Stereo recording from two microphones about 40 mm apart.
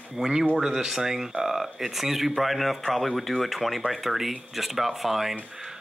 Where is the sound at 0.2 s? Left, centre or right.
Centre.